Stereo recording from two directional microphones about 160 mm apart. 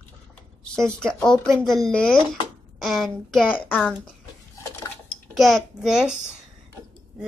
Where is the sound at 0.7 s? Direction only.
5° left (ahead or behind).